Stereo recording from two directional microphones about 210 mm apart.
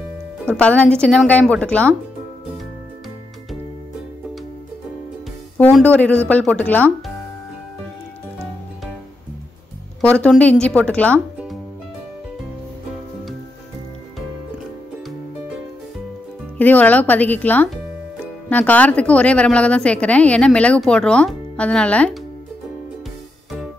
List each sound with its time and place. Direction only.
0.5 s a woman's voice: 5° left (ahead or behind)
5.6 s speech: 5° left (ahead or behind)
10.0 s a woman's voice: 5° left (ahead or behind)
16.5 s a woman's voice: 10° left (ahead or behind)